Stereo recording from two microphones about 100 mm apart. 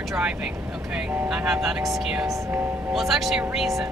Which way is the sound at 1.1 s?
15° right (ahead or behind).